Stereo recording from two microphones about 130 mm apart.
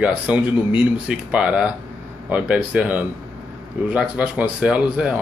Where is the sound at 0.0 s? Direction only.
10° right (ahead or behind).